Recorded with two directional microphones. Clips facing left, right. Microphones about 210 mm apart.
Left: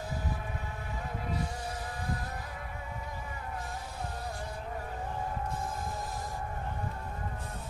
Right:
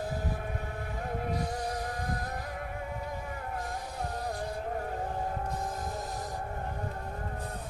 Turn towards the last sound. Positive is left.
turn(degrees=-40)  # may be behind; listen again after turning